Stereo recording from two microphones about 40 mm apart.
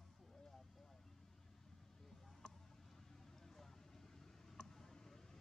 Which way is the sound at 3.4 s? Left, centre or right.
Centre.